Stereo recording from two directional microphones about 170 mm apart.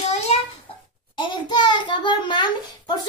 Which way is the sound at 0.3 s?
35° left (ahead or behind).